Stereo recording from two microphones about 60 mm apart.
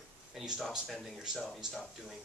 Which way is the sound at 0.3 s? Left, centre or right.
Centre.